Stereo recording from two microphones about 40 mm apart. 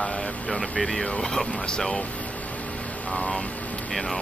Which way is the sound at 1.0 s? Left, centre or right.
Left.